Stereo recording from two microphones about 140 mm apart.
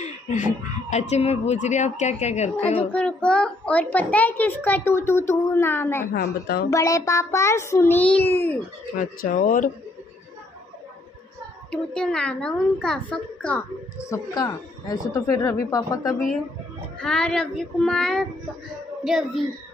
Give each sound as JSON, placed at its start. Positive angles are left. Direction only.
{"t": 0.8, "sound": "a woman's voice", "side_deg": 50}
{"t": 2.8, "sound": "a child's voice", "side_deg": 10}
{"t": 8.9, "sound": "speech", "side_deg": 80}
{"t": 11.7, "sound": "a child's voice", "side_deg": 5}
{"t": 14.0, "sound": "a child's voice", "side_deg": 25}
{"t": 17.0, "sound": "speech", "side_deg": 5}